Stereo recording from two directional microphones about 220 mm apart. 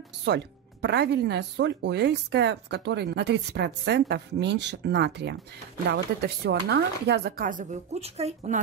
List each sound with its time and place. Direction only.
0.2 s speech: 50° right (ahead or behind); by 8.5 s 30° right (ahead or behind)